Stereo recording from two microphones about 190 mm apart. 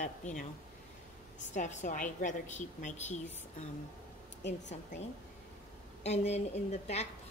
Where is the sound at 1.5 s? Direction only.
40° left (ahead or behind).